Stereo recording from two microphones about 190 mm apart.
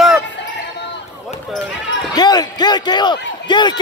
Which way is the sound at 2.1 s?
20° left (ahead or behind).